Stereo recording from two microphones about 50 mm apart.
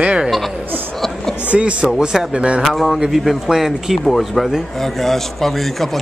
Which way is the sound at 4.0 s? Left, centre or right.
Centre.